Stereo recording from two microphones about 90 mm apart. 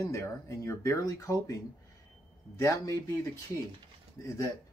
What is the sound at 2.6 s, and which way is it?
Speech, 35° left (ahead or behind).